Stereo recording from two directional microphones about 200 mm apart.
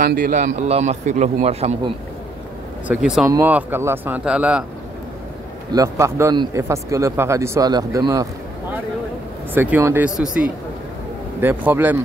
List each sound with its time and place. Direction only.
0.0 s a man's voice: 45° right (ahead or behind)
2.9 s speech: 5° right (ahead or behind)
5.7 s speech: 15° right (ahead or behind)
9.5 s speech: 10° right (ahead or behind)